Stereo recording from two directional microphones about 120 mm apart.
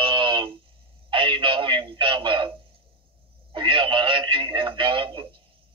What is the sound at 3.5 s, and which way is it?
Radio, 45° right (ahead or behind).